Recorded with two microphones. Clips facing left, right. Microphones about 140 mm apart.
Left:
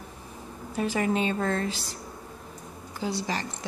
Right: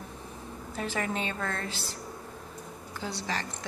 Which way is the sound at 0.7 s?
15° left (ahead or behind).